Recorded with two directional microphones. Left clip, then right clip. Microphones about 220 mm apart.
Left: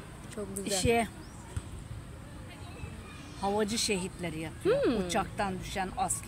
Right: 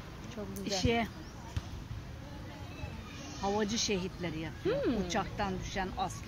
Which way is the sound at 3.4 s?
50° left (ahead or behind).